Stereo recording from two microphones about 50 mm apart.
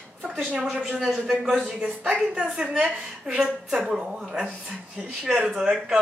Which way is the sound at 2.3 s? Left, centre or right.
Right.